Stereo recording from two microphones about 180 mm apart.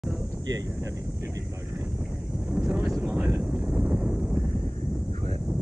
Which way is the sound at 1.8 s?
5° right (ahead or behind).